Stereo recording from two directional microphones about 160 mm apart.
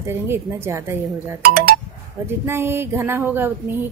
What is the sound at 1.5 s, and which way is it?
Speech, 65° right (ahead or behind).